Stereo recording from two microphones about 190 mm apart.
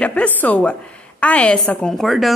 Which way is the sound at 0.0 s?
5° left (ahead or behind).